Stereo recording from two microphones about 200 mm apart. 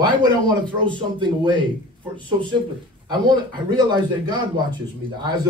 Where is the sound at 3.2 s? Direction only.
20° right (ahead or behind).